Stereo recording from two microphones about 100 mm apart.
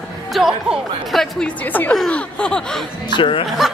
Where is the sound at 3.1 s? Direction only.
60° left (ahead or behind).